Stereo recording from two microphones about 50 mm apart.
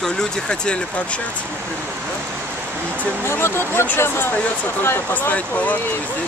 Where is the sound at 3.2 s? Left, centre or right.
Left.